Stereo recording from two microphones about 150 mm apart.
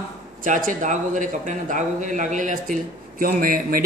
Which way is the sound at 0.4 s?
65° right (ahead or behind).